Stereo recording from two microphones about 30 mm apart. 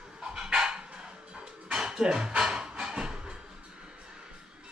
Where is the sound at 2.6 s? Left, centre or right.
Right.